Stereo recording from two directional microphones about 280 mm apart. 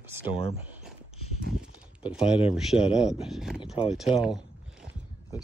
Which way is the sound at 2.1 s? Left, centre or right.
Centre.